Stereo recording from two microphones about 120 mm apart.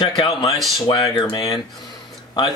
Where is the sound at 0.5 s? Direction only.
Centre (ahead or behind).